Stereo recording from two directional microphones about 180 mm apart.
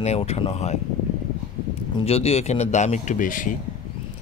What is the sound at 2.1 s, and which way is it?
A man's voice, 35° left (ahead or behind).